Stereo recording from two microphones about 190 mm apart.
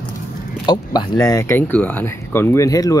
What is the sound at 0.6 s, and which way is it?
Speech, 20° left (ahead or behind).